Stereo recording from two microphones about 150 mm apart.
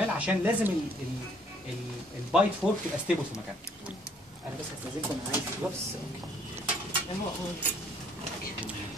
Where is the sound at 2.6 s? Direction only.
5° right (ahead or behind).